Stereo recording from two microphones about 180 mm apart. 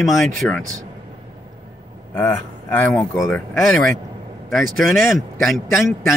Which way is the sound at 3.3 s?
Centre (ahead or behind).